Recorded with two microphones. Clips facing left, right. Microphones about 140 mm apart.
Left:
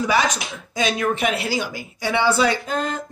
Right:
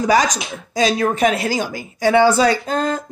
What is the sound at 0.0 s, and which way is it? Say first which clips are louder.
Speech: right 4 dB; 40° right (ahead or behind).